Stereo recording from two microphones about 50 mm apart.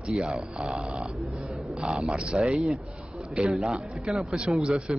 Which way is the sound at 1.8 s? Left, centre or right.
Centre.